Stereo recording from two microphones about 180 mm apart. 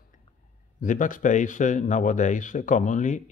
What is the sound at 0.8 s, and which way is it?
A man's voice, 45° left (ahead or behind).